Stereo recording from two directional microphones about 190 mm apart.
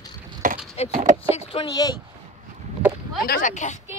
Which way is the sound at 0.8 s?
35° left (ahead or behind).